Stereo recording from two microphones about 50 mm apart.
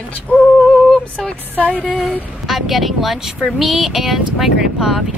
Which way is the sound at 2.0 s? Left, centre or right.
Centre.